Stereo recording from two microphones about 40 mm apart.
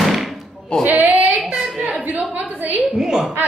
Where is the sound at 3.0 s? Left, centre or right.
Centre.